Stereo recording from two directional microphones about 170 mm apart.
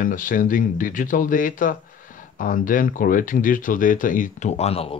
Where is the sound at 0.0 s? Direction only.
50° left (ahead or behind).